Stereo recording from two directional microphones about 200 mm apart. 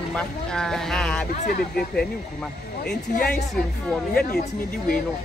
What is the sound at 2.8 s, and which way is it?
Speech, 50° left (ahead or behind).